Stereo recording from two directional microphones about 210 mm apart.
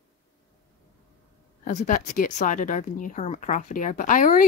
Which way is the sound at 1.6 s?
40° left (ahead or behind).